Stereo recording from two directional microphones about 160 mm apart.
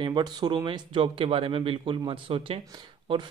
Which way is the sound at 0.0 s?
25° right (ahead or behind).